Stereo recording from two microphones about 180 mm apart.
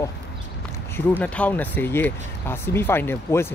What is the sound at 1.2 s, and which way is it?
Speech, 10° left (ahead or behind).